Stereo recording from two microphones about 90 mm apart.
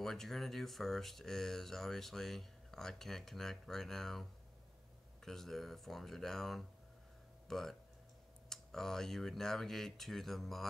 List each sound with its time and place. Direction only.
0.0 s speech: 5° left (ahead or behind)